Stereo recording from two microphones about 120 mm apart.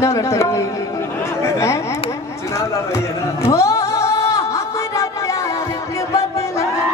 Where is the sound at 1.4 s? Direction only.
25° left (ahead or behind).